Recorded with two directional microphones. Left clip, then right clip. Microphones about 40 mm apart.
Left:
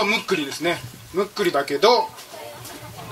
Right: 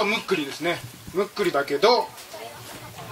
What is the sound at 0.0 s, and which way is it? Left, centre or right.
Speech, left.